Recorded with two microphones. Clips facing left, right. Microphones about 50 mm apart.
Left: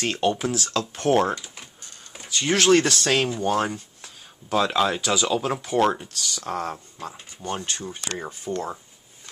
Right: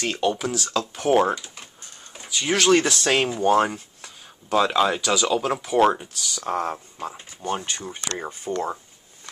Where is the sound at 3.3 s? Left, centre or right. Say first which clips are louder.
Right 4 dB; right.